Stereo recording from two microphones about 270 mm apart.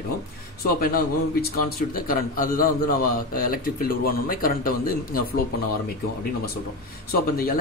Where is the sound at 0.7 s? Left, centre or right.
Left.